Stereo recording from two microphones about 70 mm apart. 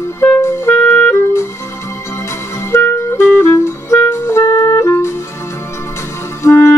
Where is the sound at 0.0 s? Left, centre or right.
Left.